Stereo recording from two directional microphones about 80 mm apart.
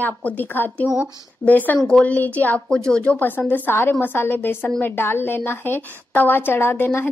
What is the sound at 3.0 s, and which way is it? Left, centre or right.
A woman's voice, left.